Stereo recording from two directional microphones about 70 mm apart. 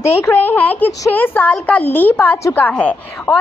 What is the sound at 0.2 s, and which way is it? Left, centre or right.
A woman's voice, left.